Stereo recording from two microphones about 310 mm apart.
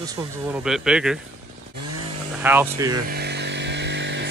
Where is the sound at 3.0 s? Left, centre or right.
Right.